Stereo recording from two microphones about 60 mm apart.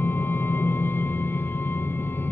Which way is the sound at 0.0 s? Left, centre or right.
Left.